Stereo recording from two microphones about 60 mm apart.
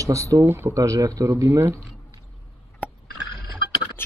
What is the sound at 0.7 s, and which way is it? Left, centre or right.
Speech, right.